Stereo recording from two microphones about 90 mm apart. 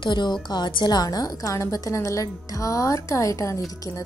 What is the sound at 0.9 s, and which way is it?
A woman's voice, 45° left (ahead or behind).